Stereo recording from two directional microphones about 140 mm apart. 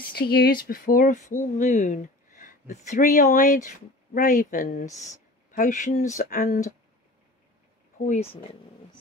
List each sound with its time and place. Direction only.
0.1 s speech: 90° left; by 4.8 s 70° left (ahead or behind)
4.8 s speech: 25° left (ahead or behind)
5.5 s speech: 70° left (ahead or behind)
8.0 s speech: 55° left (ahead or behind)